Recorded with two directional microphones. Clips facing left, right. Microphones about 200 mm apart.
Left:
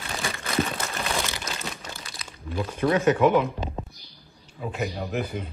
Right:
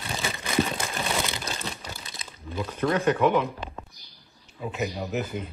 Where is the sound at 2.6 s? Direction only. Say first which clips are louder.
Left 2 dB; 5° left (ahead or behind).